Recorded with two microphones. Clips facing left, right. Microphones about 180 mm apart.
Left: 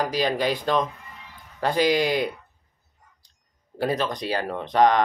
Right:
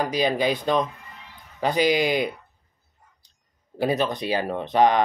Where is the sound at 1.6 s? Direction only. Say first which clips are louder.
Even; centre (ahead or behind).